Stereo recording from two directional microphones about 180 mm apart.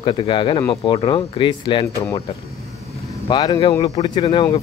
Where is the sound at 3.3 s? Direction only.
25° left (ahead or behind).